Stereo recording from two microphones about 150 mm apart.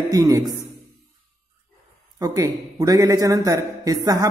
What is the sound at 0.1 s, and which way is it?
Speech, 25° right (ahead or behind).